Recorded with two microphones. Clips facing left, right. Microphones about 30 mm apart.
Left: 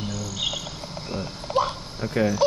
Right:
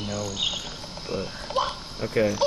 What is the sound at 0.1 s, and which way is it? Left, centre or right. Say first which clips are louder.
Cricket: right 2 dB; right.